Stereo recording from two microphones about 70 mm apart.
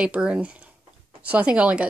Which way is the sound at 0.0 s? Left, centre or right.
Centre.